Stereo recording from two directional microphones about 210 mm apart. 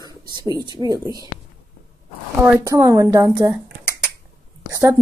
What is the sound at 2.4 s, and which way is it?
Speech, 10° right (ahead or behind).